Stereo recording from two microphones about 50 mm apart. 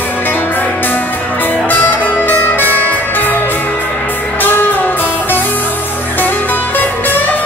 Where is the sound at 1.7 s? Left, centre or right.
Left.